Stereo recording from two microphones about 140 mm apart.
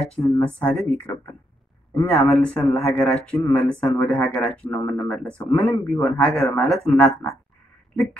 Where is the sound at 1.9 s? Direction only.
10° left (ahead or behind).